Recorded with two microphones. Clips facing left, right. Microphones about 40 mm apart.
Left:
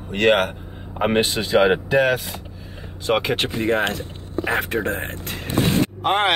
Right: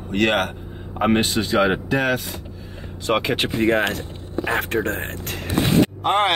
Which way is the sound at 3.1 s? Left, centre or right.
Centre.